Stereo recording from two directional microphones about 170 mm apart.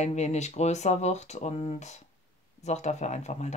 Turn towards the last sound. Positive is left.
turn(degrees=40)  # may be behind; listen again after turning